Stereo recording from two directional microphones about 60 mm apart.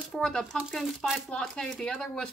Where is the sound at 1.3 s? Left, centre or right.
Centre.